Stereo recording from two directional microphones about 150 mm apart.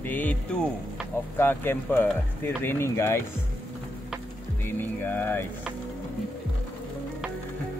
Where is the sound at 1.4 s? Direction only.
15° left (ahead or behind).